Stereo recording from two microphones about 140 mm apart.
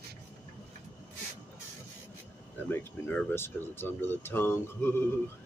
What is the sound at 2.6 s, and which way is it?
Speech, 15° left (ahead or behind).